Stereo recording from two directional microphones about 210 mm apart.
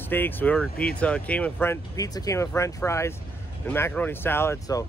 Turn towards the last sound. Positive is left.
turn(degrees=15)  # may be behind; listen again after turning